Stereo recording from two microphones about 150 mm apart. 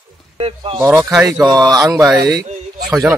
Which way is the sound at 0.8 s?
20° right (ahead or behind).